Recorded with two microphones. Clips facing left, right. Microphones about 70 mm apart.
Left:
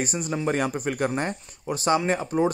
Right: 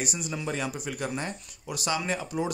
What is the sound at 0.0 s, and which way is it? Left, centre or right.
Speech, left.